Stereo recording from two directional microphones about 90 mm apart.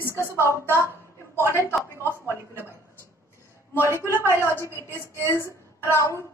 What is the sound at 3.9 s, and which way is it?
A woman's voice, 30° left (ahead or behind).